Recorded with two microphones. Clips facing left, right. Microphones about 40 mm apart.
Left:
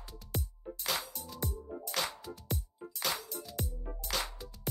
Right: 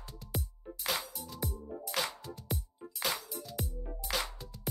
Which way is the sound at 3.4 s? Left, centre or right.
Centre.